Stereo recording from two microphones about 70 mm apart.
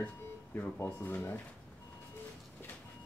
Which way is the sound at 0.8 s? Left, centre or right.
Left.